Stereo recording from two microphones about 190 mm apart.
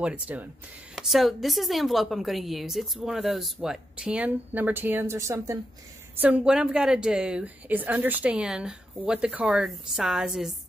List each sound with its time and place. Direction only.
0.0 s a woman's voice: 10° right (ahead or behind)